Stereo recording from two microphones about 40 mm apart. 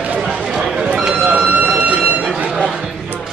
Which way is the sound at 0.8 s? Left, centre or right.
Right.